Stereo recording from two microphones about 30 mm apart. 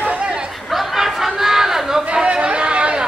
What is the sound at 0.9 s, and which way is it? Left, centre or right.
Chatter, centre.